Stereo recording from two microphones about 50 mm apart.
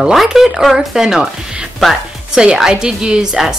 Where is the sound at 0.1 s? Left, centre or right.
Centre.